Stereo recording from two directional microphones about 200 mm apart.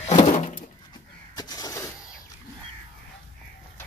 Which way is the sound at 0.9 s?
20° left (ahead or behind).